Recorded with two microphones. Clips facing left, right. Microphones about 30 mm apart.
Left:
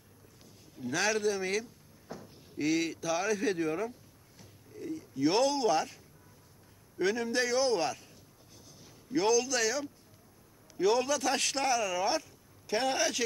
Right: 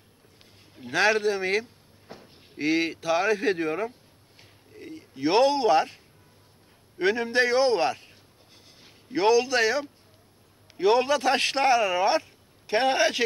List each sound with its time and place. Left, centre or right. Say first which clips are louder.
0.7 s a man's voice: right 8 dB; right
7.0 s a man's voice: right 6 dB; right
9.1 s a man's voice: right 6 dB; right